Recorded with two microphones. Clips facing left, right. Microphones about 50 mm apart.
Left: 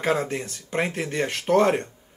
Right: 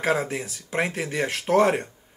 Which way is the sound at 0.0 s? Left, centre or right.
Centre.